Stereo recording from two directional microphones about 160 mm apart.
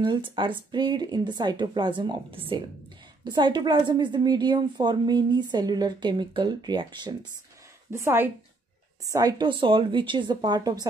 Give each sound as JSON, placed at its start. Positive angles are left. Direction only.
{"t": 0.0, "sound": "a woman's voice", "side_deg": -30}
{"t": 7.9, "sound": "a woman's voice", "side_deg": -15}